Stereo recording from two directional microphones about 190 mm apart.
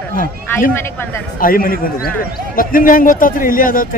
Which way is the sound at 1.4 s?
50° left (ahead or behind).